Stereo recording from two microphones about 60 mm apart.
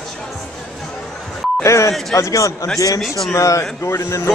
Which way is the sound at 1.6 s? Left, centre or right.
Left.